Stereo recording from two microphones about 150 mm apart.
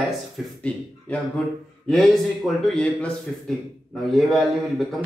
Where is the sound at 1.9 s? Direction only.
Centre (ahead or behind).